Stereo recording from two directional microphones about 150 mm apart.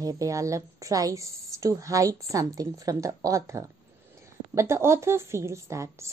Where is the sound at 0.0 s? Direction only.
20° right (ahead or behind).